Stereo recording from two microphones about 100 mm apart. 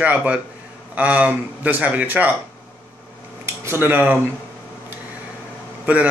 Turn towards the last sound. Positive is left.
turn(degrees=-15)  # may be behind; listen again after turning